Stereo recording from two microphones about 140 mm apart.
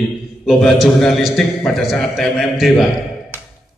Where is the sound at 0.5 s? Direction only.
5° left (ahead or behind).